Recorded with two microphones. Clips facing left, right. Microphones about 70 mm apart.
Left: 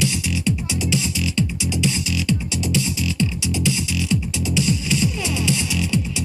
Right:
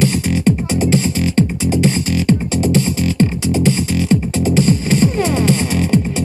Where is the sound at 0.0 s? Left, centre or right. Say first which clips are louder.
Right 8 dB; right.